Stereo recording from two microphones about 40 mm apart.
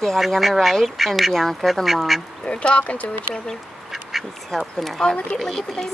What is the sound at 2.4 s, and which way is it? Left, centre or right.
Speech, left.